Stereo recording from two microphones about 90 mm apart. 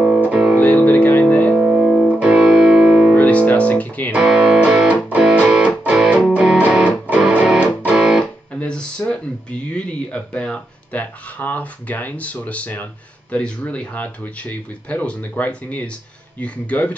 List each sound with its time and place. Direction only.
0.0 s music: 15° right (ahead or behind)
0.6 s music: 15° left (ahead or behind)
1.6 s music: 10° right (ahead or behind)
3.2 s music: 15° left (ahead or behind)
4.1 s music: 10° right (ahead or behind)
8.5 s a sound: 10° left (ahead or behind)
9.8 s speech: 10° left (ahead or behind)